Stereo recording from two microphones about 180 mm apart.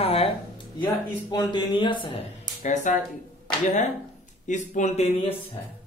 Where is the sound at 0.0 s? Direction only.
35° left (ahead or behind).